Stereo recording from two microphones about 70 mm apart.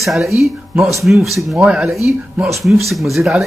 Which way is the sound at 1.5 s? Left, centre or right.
Centre.